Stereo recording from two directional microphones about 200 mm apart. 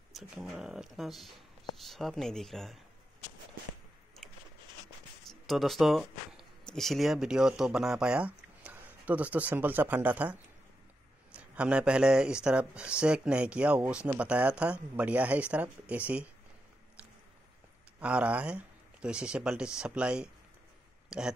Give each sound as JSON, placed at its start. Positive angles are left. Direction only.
{"t": 0.1, "sound": "speech", "side_deg": 0}
{"t": 5.3, "sound": "speech", "side_deg": 0}
{"t": 11.3, "sound": "speech", "side_deg": -5}
{"t": 18.0, "sound": "speech", "side_deg": -5}